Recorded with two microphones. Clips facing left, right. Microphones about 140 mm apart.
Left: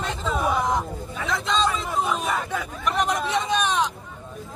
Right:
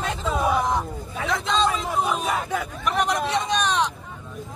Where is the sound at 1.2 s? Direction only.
Centre (ahead or behind).